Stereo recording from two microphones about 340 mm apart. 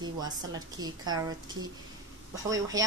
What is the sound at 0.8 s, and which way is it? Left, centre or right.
A woman's voice, centre.